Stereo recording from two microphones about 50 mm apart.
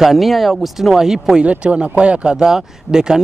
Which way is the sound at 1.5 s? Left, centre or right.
Right.